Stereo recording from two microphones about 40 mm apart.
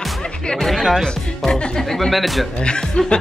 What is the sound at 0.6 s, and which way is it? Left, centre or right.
Speech, centre.